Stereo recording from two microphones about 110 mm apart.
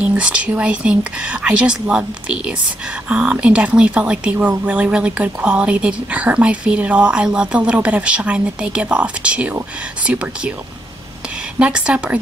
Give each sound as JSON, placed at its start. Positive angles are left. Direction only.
{"t": 0.0, "sound": "speech", "side_deg": -10}
{"t": 11.6, "sound": "speech", "side_deg": -10}